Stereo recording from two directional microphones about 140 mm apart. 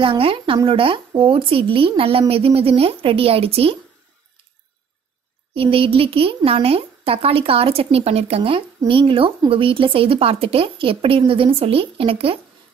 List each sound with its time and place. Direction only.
0.0 s speech: 40° right (ahead or behind)
5.5 s speech: 40° right (ahead or behind)